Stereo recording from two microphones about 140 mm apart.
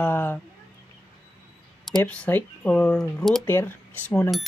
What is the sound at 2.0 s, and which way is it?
Speech, 10° left (ahead or behind).